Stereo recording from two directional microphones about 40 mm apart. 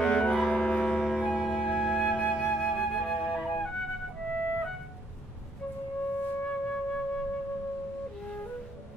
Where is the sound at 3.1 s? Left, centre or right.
Centre.